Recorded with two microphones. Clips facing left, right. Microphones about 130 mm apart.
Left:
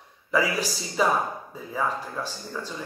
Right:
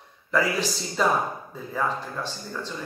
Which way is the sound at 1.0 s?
5° left (ahead or behind).